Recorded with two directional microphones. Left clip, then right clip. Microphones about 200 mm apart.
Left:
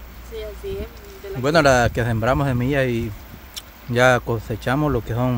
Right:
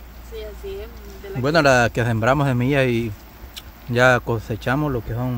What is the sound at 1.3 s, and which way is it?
Speech, centre (ahead or behind).